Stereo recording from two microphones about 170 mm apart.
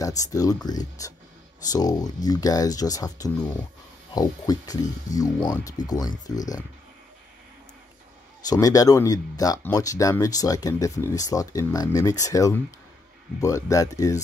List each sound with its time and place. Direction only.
0.0 s speech: 20° left (ahead or behind)
8.5 s speech: 20° left (ahead or behind)